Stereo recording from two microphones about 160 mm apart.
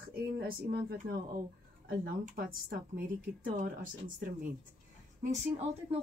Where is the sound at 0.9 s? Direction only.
60° right (ahead or behind).